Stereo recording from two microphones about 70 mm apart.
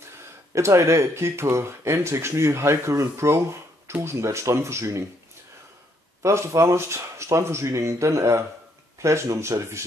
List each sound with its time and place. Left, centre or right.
0.6 s speech: right
6.2 s speech: right